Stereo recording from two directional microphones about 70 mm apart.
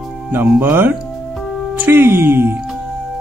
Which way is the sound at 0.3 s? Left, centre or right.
Right.